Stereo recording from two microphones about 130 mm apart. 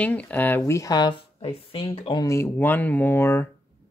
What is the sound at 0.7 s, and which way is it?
Speech, 25° left (ahead or behind).